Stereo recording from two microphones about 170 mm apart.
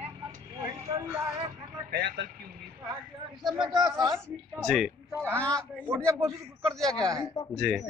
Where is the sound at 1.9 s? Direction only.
75° right (ahead or behind).